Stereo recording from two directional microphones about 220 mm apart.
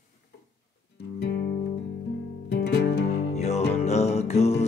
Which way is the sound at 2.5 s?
50° left (ahead or behind).